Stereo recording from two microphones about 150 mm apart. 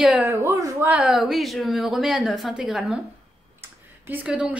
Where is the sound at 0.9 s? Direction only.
5° right (ahead or behind).